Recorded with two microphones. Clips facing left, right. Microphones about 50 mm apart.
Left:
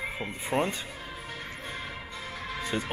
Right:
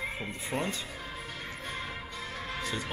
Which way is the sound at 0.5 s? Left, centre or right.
Left.